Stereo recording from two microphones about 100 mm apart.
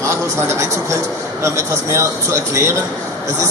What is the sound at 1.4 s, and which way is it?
Speech, 30° right (ahead or behind).